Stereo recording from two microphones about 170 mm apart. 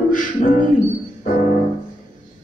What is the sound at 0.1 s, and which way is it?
Music, 50° left (ahead or behind).